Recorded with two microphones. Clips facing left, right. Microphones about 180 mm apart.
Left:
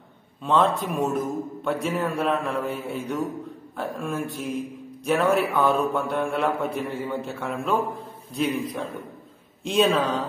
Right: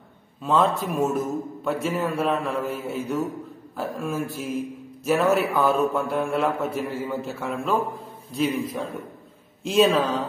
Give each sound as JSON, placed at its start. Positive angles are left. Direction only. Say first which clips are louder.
{"t": 0.4, "sound": "mantra", "louder": "even", "side_deg": 0}